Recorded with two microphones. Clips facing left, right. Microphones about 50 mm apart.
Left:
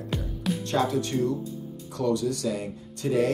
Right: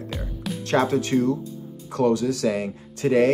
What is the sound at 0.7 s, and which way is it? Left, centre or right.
Speech, right.